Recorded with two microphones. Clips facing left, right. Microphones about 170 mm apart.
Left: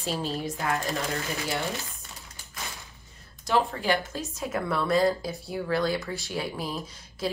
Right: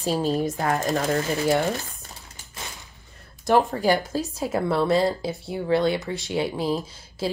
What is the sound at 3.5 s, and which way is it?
A woman's voice, 45° right (ahead or behind).